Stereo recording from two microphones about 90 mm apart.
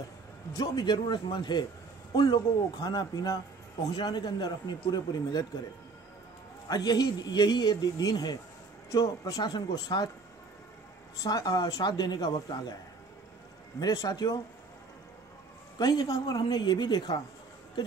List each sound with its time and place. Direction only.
0.6 s a man's voice: 55° left (ahead or behind)
6.7 s speech: 50° left (ahead or behind)
11.1 s speech: 45° left (ahead or behind)
13.7 s speech: 45° left (ahead or behind)
15.8 s speech: 55° left (ahead or behind)